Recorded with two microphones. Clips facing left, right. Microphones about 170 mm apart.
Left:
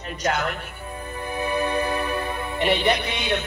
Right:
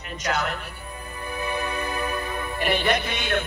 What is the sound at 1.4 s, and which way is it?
Music, 35° left (ahead or behind).